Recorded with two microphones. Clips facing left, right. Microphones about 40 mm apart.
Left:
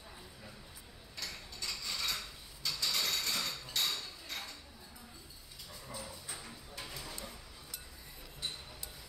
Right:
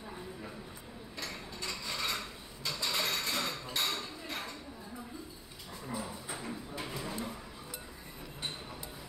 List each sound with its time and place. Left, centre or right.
1.1 s mechanisms: right
5.9 s dog: right
6.3 s clip-clop: right